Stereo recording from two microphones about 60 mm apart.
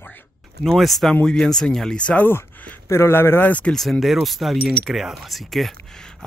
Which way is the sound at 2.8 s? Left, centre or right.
Left.